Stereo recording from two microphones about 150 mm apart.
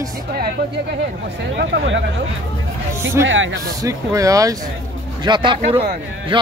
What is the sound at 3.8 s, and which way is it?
Speech, 20° right (ahead or behind).